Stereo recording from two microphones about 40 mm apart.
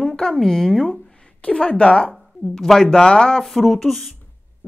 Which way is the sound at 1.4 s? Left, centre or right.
Left.